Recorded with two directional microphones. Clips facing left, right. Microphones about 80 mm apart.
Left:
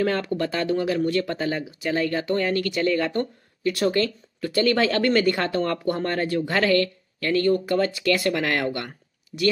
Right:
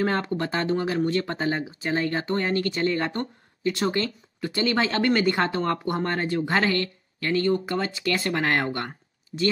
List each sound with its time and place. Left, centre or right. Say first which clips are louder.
0.0 s speech: left 2 dB; right